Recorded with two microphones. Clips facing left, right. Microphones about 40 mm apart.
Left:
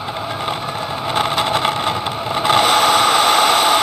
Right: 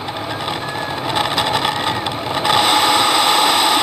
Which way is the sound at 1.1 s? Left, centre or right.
Right.